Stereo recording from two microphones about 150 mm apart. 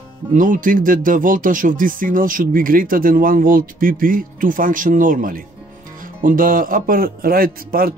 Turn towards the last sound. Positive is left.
turn(degrees=-80)